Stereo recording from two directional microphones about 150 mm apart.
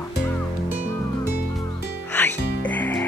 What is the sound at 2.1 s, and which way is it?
Music, 10° left (ahead or behind).